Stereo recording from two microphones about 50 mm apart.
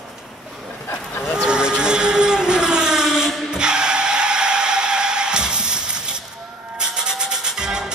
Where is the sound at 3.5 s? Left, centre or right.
Centre.